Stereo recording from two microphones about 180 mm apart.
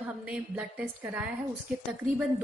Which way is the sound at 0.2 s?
5° right (ahead or behind).